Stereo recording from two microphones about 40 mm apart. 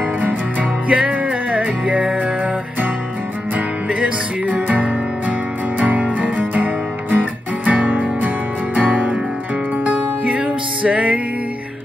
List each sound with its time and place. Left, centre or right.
0.2 s music: right
0.8 s music: right
3.5 s music: right